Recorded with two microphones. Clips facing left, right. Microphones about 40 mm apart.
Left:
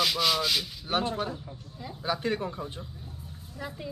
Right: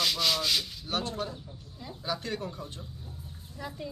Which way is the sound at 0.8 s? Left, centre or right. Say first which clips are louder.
Left 4 dB; left.